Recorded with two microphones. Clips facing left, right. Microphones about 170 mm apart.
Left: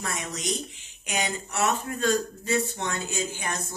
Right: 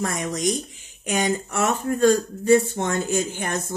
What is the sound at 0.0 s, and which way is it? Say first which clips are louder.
Speech: right 8 dB; 45° right (ahead or behind).